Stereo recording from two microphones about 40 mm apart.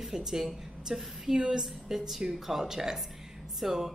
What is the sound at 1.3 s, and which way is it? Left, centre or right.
Speech, right.